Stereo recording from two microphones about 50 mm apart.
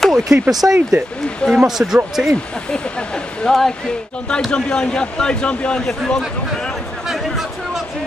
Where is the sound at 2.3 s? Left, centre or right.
Centre.